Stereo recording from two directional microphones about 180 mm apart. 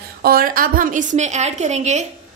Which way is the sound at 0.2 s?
55° right (ahead or behind).